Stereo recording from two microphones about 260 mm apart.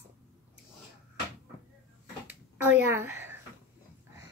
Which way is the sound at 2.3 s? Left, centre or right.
Centre.